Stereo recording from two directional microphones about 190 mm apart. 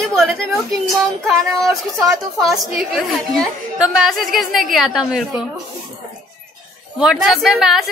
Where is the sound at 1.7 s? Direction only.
15° right (ahead or behind).